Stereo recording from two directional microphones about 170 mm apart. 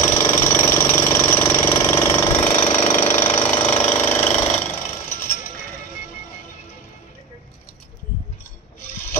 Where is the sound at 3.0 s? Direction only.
40° left (ahead or behind).